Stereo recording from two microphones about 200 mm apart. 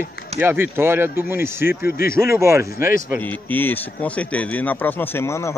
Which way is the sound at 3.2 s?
10° left (ahead or behind).